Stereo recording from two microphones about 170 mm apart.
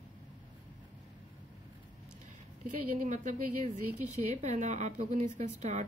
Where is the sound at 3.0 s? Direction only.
45° right (ahead or behind).